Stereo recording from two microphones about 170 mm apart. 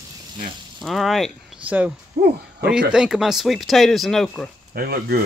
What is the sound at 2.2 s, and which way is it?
Speech, 65° right (ahead or behind).